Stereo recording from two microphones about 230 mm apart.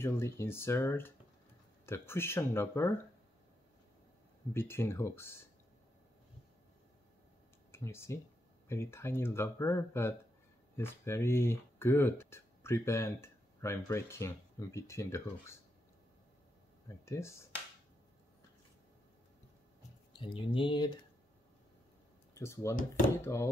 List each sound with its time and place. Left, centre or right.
0.0 s speech: centre
4.6 s speech: centre
7.7 s speech: centre
17.0 s speech: centre
20.2 s speech: left
22.3 s speech: centre